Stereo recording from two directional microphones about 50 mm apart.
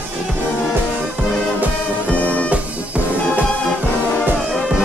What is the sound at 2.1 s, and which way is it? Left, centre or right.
Music, left.